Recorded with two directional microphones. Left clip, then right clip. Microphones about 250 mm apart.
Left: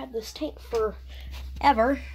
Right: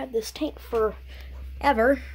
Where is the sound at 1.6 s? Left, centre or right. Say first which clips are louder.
Even; centre.